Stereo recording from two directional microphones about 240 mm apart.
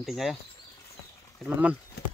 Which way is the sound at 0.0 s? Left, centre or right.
Centre.